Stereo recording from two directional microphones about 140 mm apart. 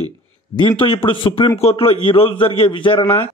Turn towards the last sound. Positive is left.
turn(degrees=40)  # may be behind; listen again after turning